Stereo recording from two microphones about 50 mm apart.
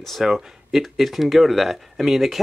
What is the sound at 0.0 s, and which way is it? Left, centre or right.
Speech, centre.